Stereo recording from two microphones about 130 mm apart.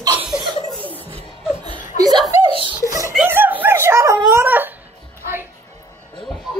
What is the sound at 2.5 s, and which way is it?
Chuckle, 40° right (ahead or behind).